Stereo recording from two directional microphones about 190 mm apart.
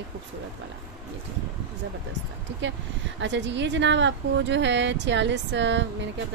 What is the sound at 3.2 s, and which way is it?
Speech, 70° right (ahead or behind).